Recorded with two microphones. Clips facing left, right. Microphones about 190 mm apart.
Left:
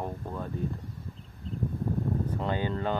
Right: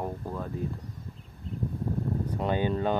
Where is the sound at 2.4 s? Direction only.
15° right (ahead or behind).